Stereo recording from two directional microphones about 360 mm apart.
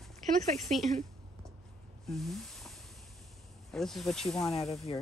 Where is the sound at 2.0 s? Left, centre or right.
Centre.